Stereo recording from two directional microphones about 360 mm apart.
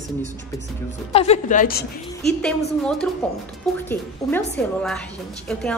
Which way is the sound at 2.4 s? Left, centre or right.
Centre.